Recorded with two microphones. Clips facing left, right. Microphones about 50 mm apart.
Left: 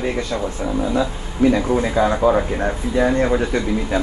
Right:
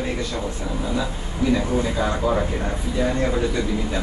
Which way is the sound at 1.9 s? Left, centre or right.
Left.